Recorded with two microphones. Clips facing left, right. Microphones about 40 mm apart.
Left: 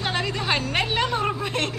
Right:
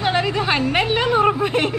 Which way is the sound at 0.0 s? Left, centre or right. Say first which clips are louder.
Right 7 dB; centre.